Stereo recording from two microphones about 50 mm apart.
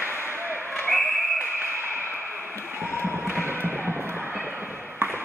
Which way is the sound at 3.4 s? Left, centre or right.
Right.